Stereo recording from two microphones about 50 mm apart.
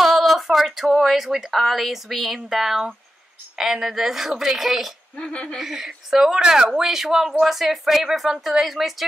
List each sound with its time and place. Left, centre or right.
0.0 s a woman's voice: centre
5.1 s speech: left
5.6 s a woman's voice: centre